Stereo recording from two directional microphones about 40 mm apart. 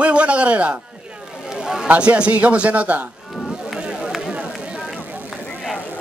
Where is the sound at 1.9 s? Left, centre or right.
Right.